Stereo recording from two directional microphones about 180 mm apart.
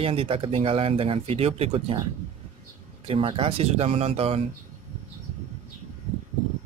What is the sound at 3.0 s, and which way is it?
Speech, 30° right (ahead or behind).